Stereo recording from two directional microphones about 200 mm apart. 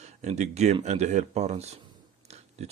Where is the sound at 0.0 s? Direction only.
35° right (ahead or behind).